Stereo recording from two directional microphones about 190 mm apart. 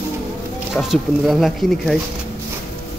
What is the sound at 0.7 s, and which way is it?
Speech, centre (ahead or behind).